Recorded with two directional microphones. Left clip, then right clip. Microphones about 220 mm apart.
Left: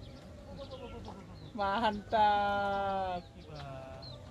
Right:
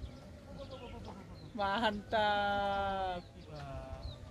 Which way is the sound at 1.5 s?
20° right (ahead or behind).